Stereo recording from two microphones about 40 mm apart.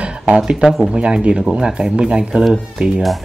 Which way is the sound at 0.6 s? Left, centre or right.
Centre.